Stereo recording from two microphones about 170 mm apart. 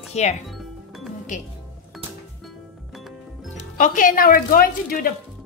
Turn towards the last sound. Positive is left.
turn(degrees=55)  # may be behind; listen again after turning